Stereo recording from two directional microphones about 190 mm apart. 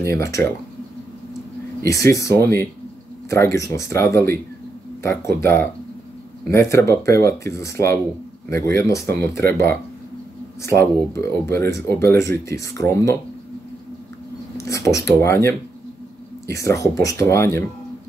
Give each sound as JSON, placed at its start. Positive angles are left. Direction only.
{"t": 0.0, "sound": "speech", "side_deg": 15}
{"t": 1.9, "sound": "speech", "side_deg": 15}
{"t": 14.6, "sound": "speech", "side_deg": 15}